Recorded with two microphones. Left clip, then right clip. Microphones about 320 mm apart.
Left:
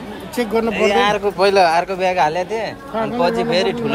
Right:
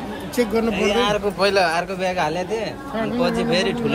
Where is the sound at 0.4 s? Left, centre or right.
Left.